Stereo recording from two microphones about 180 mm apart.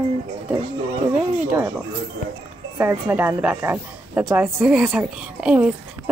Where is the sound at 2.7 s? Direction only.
10° right (ahead or behind).